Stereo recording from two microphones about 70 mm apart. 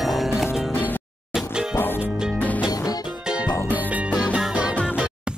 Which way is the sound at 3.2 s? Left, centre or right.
Centre.